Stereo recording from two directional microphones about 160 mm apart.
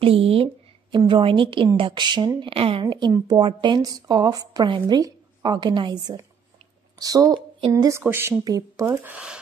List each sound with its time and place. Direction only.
0.0 s a woman's voice: 35° right (ahead or behind); by 9.4 s 5° right (ahead or behind)